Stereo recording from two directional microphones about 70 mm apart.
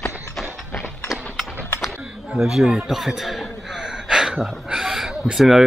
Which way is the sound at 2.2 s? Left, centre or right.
Centre.